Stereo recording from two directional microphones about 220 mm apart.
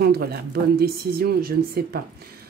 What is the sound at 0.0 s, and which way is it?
Speech, 45° right (ahead or behind).